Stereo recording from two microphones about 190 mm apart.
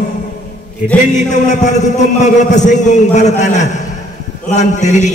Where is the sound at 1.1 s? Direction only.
40° left (ahead or behind).